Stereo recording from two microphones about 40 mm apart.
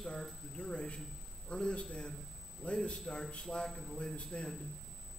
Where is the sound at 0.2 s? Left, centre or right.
Left.